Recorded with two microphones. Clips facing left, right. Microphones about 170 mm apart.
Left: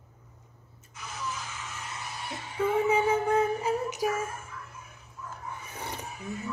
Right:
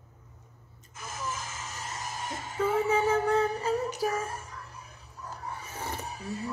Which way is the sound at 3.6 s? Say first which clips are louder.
Even; 10° left (ahead or behind).